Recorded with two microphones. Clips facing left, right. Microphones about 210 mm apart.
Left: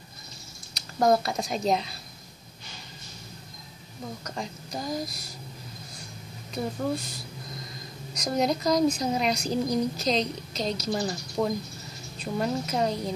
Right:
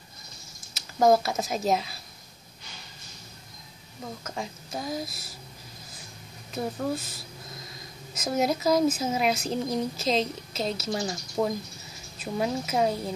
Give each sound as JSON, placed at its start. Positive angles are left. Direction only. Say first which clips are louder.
{"t": 0.7, "sound": "speech", "louder": "right 2 dB", "side_deg": 0}
{"t": 4.2, "sound": "a woman's voice", "louder": "even", "side_deg": 0}
{"t": 6.5, "sound": "a woman's voice", "louder": "even", "side_deg": 0}